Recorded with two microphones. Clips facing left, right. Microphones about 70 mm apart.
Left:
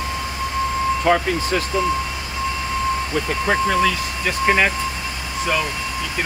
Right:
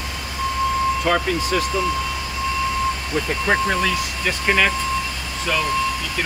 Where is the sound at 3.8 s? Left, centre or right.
Centre.